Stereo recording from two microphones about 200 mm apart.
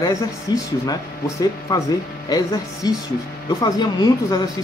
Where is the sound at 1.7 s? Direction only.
20° left (ahead or behind).